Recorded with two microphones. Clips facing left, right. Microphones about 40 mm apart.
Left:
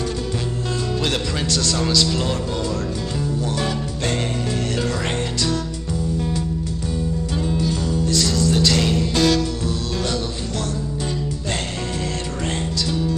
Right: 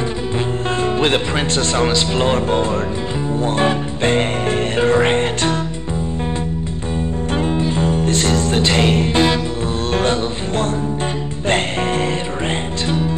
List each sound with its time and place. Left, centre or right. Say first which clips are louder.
0.9 s speech: right 5 dB; right
3.3 s music: right 10 dB; right
7.3 s music: right 5 dB; right
12.8 s music: right 5 dB; right